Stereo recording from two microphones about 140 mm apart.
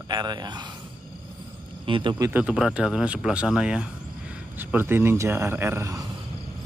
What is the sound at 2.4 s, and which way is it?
Speech, 5° right (ahead or behind).